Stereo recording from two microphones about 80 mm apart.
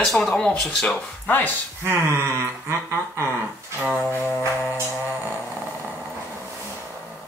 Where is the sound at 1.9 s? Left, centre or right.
Right.